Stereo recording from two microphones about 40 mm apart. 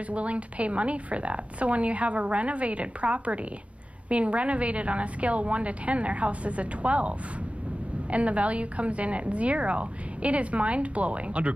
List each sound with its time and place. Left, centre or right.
0.1 s a woman's voice: right